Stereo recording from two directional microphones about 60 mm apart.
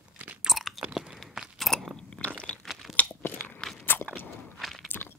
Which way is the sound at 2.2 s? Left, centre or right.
Left.